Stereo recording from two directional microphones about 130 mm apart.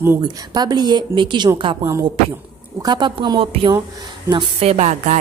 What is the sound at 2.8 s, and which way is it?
Speech, 35° right (ahead or behind).